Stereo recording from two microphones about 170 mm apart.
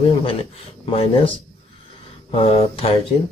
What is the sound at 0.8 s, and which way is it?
A man's voice, 35° left (ahead or behind).